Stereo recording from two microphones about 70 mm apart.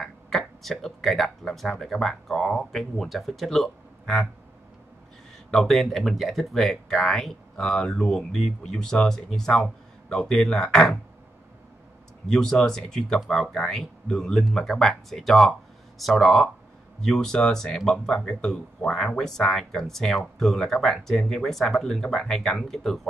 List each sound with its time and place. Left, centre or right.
0.0 s speech: centre
5.5 s speech: centre
12.3 s speech: centre